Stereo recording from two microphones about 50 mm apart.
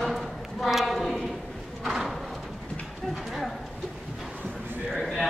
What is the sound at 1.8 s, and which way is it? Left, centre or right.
Horse, centre.